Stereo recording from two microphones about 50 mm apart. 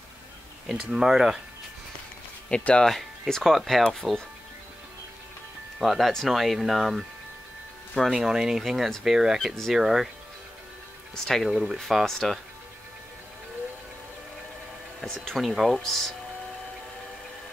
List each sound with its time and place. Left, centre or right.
0.7 s speech: centre
2.5 s speech: left
2.8 s speech: centre
5.8 s speech: centre
8.1 s speech: centre
11.2 s speech: centre
15.1 s speech: centre